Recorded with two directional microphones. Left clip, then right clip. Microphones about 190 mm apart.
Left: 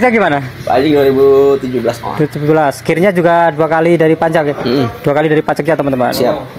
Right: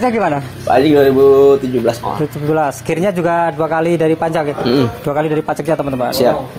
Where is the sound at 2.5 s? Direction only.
45° left (ahead or behind).